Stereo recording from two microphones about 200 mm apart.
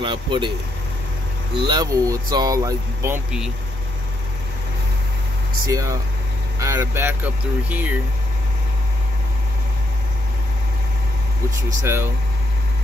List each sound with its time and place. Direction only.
0.0 s speech: 25° right (ahead or behind)
1.7 s speech: 15° right (ahead or behind)
5.7 s speech: 15° right (ahead or behind)
11.8 s speech: 10° right (ahead or behind)